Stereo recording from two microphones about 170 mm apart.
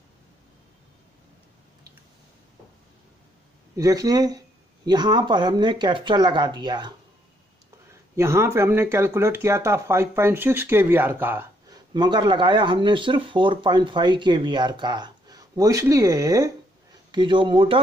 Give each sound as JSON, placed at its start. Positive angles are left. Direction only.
{"t": 3.7, "sound": "speech", "side_deg": -20}
{"t": 8.2, "sound": "speech", "side_deg": -15}
{"t": 11.9, "sound": "speech", "side_deg": -25}